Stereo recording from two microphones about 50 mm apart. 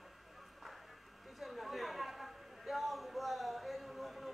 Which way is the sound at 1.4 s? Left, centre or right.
Centre.